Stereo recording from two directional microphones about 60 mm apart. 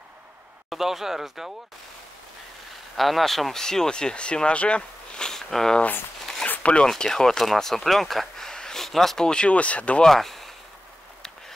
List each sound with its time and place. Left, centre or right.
0.7 s speech: centre
3.0 s speech: centre
6.4 s a sound: left
6.9 s speech: centre
10.0 s speech: centre